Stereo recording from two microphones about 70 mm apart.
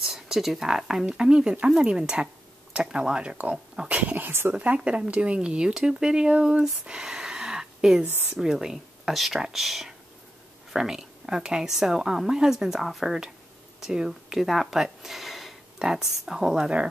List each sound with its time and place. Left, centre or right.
0.0 s speech: centre
3.9 s speech: right
4.6 s speech: centre
8.0 s speech: right
8.4 s speech: centre